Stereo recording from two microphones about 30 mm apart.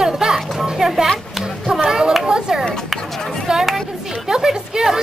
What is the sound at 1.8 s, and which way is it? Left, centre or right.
Children playing, right.